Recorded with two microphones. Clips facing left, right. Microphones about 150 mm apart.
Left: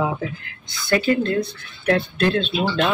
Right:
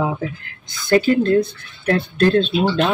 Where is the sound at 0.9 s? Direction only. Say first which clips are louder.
Right 5 dB; 40° right (ahead or behind).